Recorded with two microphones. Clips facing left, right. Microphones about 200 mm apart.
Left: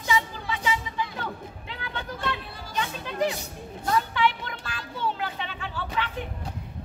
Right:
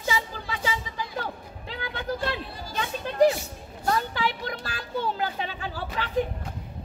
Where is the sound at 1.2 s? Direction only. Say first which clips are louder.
Left 1 dB; 35° right (ahead or behind).